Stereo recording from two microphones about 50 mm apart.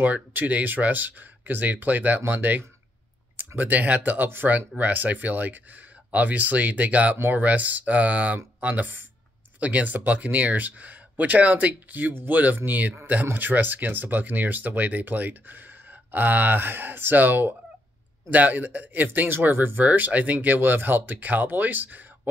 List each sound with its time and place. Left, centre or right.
0.0 s speech: right
19.8 s speech: right